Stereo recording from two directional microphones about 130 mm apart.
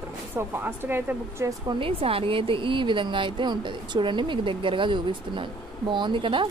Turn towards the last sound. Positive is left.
turn(degrees=-40)  # may be behind; listen again after turning